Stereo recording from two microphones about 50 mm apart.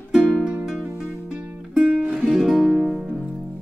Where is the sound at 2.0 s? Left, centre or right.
Right.